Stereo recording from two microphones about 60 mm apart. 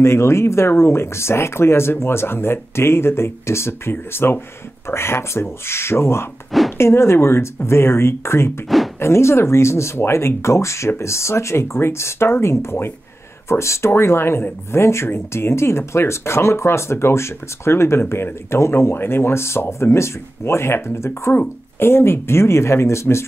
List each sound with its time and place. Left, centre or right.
0.0 s speech: left
8.7 s speech: centre
9.0 s speech: left